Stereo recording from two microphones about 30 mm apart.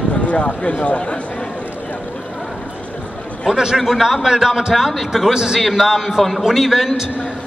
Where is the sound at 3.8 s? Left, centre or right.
Centre.